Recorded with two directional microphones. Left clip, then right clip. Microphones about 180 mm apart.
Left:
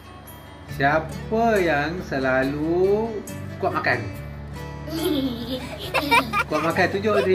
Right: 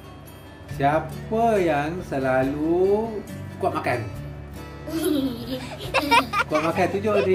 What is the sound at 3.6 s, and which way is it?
Speech, 20° right (ahead or behind).